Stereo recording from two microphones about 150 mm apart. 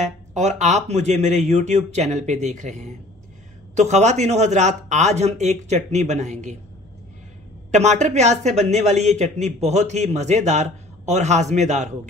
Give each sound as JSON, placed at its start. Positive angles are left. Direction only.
{"t": 0.0, "sound": "a man's voice", "side_deg": -50}
{"t": 7.7, "sound": "a man's voice", "side_deg": -50}